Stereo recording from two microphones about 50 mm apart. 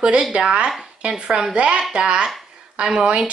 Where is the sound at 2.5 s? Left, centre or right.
Centre.